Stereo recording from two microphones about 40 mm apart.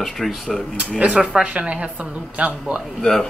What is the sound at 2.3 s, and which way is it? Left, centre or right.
Speech, right.